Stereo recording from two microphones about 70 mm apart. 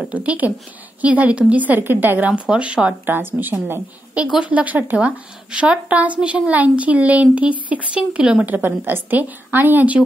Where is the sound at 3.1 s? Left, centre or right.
Right.